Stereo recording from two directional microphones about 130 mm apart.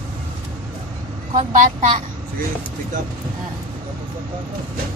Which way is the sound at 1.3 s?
75° right (ahead or behind).